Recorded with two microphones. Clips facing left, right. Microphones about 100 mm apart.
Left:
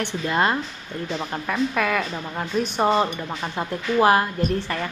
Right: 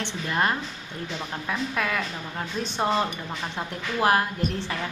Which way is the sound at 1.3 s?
Centre (ahead or behind).